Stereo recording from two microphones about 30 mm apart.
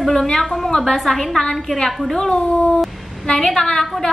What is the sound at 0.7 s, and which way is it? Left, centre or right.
A woman's voice, centre.